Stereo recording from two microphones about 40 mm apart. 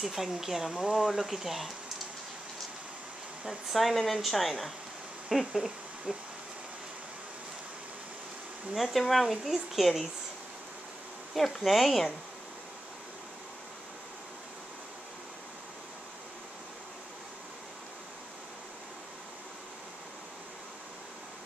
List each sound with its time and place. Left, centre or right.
0.0 s speech: centre
3.4 s speech: centre
6.1 s speech: right
8.7 s speech: centre
11.3 s speech: centre